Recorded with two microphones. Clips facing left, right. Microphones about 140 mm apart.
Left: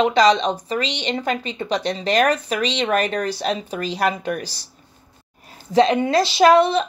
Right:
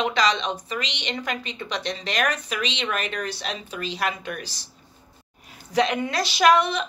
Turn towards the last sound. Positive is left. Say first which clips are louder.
# left 5 dB
turn(degrees=30)  # may be behind; listen again after turning